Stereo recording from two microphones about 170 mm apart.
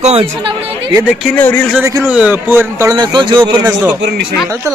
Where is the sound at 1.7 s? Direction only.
15° right (ahead or behind).